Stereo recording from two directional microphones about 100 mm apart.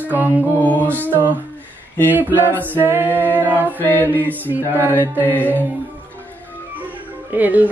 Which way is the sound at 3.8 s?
20° left (ahead or behind).